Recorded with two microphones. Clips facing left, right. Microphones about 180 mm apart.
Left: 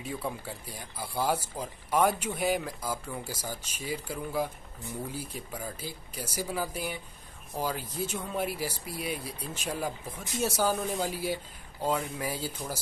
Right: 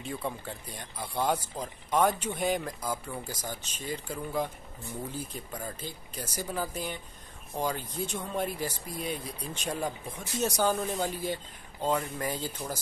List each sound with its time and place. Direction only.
0.0 s speech: 5° left (ahead or behind)